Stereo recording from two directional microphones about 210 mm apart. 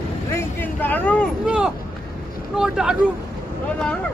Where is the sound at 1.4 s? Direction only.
5° right (ahead or behind).